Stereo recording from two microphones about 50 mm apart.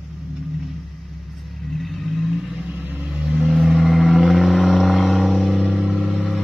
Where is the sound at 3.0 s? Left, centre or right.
Centre.